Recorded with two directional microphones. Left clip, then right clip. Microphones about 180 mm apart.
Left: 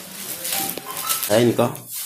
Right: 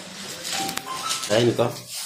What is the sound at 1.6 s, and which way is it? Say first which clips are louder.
Speech: left 2 dB; 60° left (ahead or behind).